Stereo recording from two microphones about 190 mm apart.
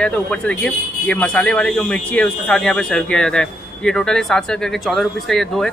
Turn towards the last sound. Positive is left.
turn(degrees=0)  # may be behind; listen again after turning